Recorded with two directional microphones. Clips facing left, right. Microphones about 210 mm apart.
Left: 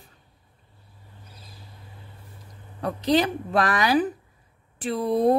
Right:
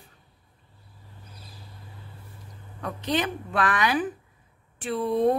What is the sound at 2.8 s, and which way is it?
Speech, 35° left (ahead or behind).